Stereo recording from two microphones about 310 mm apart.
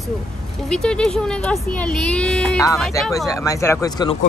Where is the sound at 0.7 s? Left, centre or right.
Centre.